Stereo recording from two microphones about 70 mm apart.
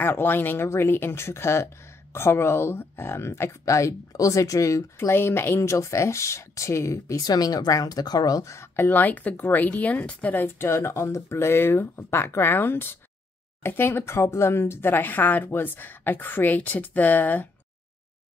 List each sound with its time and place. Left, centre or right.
0.0 s a woman's voice: left
4.9 s a woman's voice: left
5.6 s speech: left
7.2 s speech: left
8.7 s a woman's voice: left